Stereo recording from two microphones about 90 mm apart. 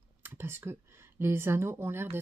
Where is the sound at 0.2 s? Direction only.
25° right (ahead or behind).